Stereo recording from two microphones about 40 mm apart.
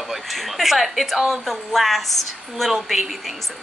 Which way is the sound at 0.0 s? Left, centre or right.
Centre.